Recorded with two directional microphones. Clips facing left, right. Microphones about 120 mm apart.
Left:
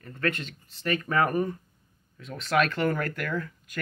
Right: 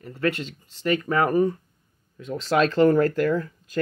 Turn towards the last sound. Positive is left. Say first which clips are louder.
# right 8 dB
turn(degrees=-30)  # may be behind; listen again after turning